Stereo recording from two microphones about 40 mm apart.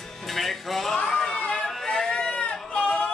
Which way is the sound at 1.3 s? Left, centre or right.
Left.